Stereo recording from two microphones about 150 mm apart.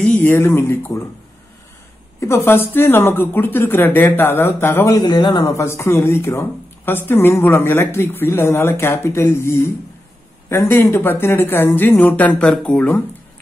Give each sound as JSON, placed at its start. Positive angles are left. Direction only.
{"t": 0.0, "sound": "speech", "side_deg": 10}
{"t": 2.1, "sound": "a woman's voice", "side_deg": 15}